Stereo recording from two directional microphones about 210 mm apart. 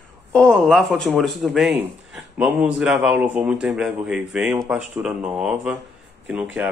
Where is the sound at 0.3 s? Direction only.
5° left (ahead or behind).